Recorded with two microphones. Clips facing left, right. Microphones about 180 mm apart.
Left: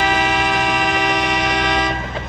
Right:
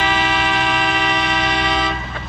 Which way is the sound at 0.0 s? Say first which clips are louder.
Left 2 dB; 45° left (ahead or behind).